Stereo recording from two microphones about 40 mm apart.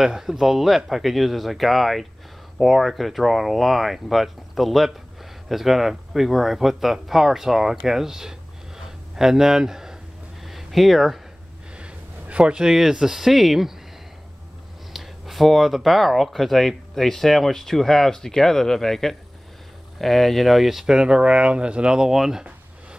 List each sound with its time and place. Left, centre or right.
0.0 s speech: centre
10.4 s a sound: centre
11.7 s a sound: right
12.6 s speech: centre
14.9 s speech: centre
20.8 s speech: centre